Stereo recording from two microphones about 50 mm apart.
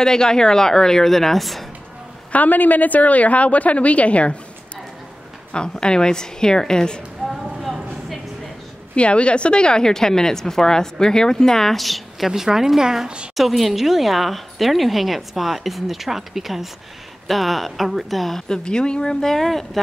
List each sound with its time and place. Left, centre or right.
0.0 s a woman's voice: centre
2.3 s a woman's voice: left
5.5 s a woman's voice: centre
7.2 s vehicle: centre
8.9 s a woman's voice: left; by 12.3 s centre
12.3 s a woman's voice: centre
18.5 s a woman's voice: centre